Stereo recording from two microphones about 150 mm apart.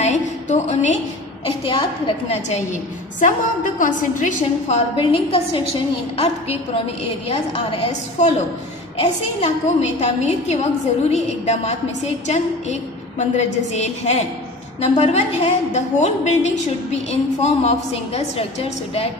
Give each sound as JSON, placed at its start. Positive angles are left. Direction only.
{"t": 0.0, "sound": "a sound", "side_deg": 50}
{"t": 1.7, "sound": "a woman's voice", "side_deg": 40}
{"t": 4.9, "sound": "a woman's voice", "side_deg": 40}